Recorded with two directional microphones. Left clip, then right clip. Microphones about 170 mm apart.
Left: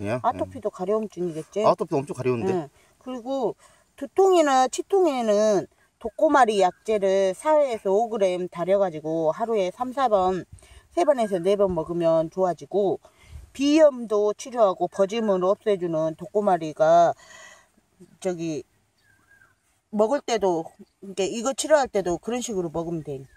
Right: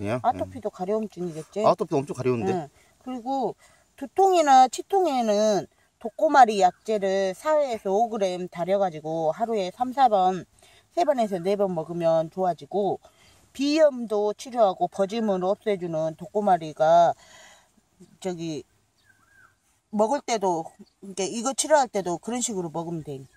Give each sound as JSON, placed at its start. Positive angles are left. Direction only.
{"t": 0.2, "sound": "speech", "side_deg": 40}
{"t": 1.6, "sound": "speech", "side_deg": 0}
{"t": 2.5, "sound": "speech", "side_deg": 45}
{"t": 19.9, "sound": "speech", "side_deg": 35}